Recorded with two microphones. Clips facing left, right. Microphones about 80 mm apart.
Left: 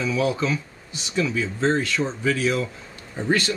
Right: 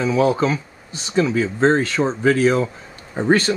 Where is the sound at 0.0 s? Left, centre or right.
Right.